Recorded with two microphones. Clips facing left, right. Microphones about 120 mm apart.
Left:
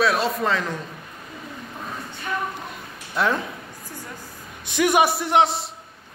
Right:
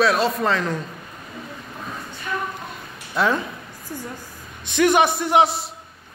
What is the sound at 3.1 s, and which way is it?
Speech, centre (ahead or behind).